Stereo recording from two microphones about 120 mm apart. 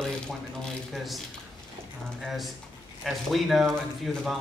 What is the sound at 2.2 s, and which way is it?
A woman's voice, centre (ahead or behind).